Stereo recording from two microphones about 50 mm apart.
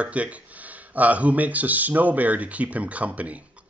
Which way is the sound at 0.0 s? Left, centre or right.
Right.